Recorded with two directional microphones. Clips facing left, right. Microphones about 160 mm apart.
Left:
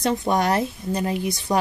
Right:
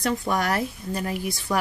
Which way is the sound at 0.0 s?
20° left (ahead or behind).